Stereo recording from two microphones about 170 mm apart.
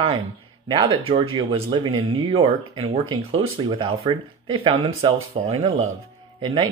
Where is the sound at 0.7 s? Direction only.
30° right (ahead or behind).